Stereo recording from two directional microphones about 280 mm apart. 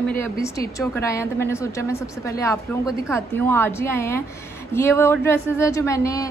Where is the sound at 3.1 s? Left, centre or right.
Centre.